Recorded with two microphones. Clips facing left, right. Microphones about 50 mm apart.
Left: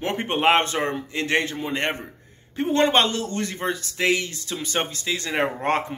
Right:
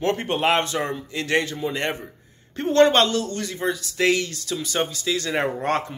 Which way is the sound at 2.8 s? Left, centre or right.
Left.